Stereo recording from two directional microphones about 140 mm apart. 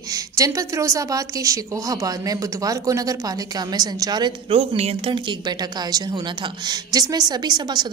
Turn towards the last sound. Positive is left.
turn(degrees=-30)  # may be behind; listen again after turning